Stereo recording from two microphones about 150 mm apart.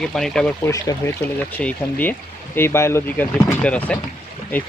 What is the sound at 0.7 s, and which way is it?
Speech, 20° left (ahead or behind).